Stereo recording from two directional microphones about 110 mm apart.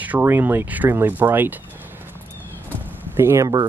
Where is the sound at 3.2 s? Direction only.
25° right (ahead or behind).